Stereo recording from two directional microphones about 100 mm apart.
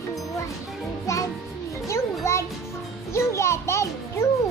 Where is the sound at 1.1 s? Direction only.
30° left (ahead or behind).